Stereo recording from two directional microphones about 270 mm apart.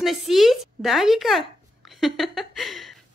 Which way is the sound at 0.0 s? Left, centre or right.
Centre.